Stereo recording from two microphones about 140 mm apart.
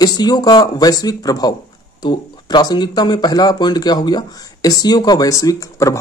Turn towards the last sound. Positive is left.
turn(degrees=25)  # may be behind; listen again after turning